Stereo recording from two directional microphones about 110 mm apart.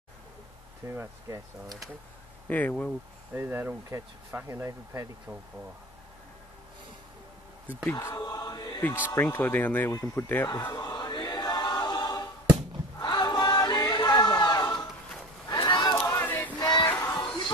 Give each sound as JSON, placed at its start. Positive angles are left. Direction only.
{"t": 0.8, "sound": "speech", "side_deg": -25}
{"t": 2.5, "sound": "speech", "side_deg": 15}
{"t": 3.3, "sound": "speech", "side_deg": -20}
{"t": 7.9, "sound": "chant", "side_deg": 30}
{"t": 9.1, "sound": "speech", "side_deg": 20}
{"t": 10.5, "sound": "choir", "side_deg": 30}
{"t": 13.0, "sound": "crowd", "side_deg": 40}
{"t": 15.5, "sound": "a sound", "side_deg": 40}
{"t": 16.1, "sound": "male singing", "side_deg": 20}
{"t": 16.5, "sound": "music", "side_deg": 40}
{"t": 16.8, "sound": "music", "side_deg": 20}